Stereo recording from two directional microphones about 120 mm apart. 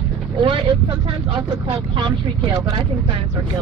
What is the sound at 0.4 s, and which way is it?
Vehicle, 45° right (ahead or behind).